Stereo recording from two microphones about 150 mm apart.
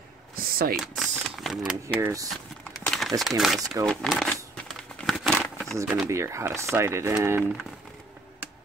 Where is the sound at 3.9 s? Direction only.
Centre (ahead or behind).